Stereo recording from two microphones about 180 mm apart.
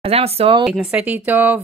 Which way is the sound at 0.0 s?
35° right (ahead or behind).